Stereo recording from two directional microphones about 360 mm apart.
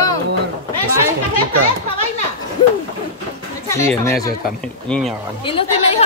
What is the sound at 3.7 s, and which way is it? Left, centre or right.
A woman's voice, centre.